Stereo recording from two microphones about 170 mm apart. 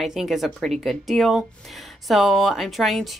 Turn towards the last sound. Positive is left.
turn(degrees=0)  # may be behind; listen again after turning